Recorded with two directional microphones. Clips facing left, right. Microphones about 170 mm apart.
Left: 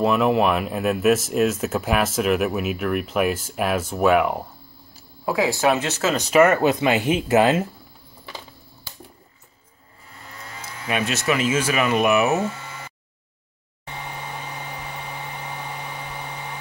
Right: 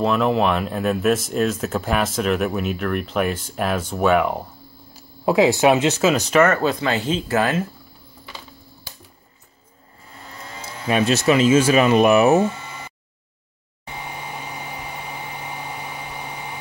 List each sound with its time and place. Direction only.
0.0 s speech: 5° left (ahead or behind)
5.2 s speech: 25° right (ahead or behind)
6.1 s speech: centre (ahead or behind)
6.4 s speech: 15° left (ahead or behind)
10.6 s speech: 30° right (ahead or behind)
13.8 s vehicle: 10° right (ahead or behind)